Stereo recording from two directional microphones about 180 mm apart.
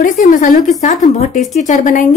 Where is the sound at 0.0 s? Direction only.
50° left (ahead or behind).